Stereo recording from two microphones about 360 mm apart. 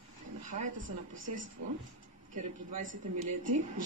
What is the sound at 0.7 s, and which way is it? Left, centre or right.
Speech, right.